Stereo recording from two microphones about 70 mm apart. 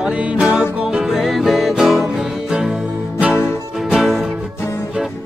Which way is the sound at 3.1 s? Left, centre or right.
Centre.